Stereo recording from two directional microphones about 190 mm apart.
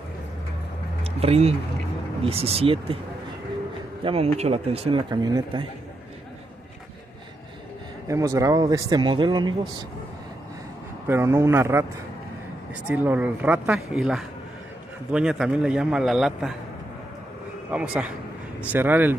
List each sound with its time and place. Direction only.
1.0 s speech: 30° right (ahead or behind)
4.0 s a man's voice: 30° right (ahead or behind)
8.1 s a man's voice: 15° right (ahead or behind)
11.1 s speech: 15° right (ahead or behind)
12.8 s a man's voice: 10° right (ahead or behind)
17.6 s speech: 5° right (ahead or behind)